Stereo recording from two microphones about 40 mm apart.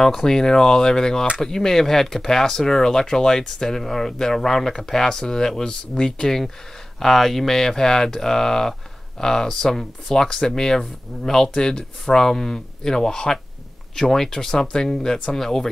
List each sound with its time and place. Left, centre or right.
0.2 s speech: centre
6.2 s speech: centre